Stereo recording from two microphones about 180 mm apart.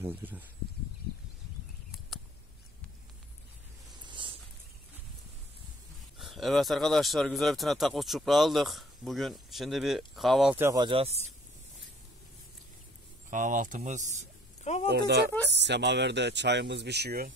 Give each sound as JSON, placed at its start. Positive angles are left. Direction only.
{"t": 0.0, "sound": "speech", "side_deg": -10}
{"t": 3.9, "sound": "a sound", "side_deg": -25}
{"t": 6.1, "sound": "speech", "side_deg": 0}
{"t": 10.5, "sound": "speech", "side_deg": -15}
{"t": 10.8, "sound": "speech", "side_deg": -30}
{"t": 13.3, "sound": "speech", "side_deg": -45}
{"t": 14.6, "sound": "speech", "side_deg": 40}
{"t": 14.9, "sound": "speech", "side_deg": -65}